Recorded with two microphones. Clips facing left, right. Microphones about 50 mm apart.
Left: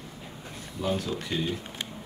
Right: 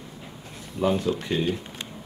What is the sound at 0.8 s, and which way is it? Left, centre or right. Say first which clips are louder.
Speech: right 6 dB; right.